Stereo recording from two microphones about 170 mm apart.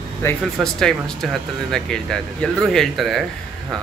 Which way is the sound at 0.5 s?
5° left (ahead or behind).